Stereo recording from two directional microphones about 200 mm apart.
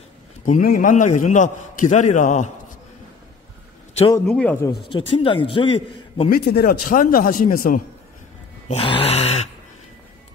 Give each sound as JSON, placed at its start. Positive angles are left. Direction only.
{"t": 0.5, "sound": "a man's voice", "side_deg": 45}
{"t": 4.3, "sound": "speech", "side_deg": 5}
{"t": 4.8, "sound": "a man's voice", "side_deg": 25}
{"t": 6.3, "sound": "a man's voice", "side_deg": 50}
{"t": 8.6, "sound": "a sound", "side_deg": 30}